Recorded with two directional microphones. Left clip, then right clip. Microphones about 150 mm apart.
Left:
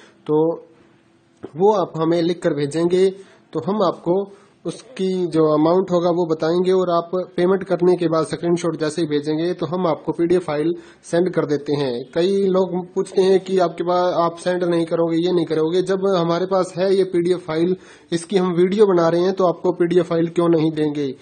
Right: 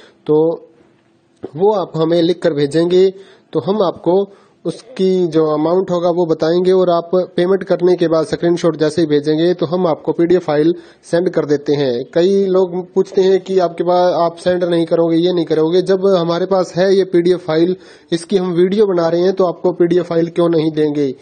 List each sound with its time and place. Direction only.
0.3 s speech: 25° right (ahead or behind)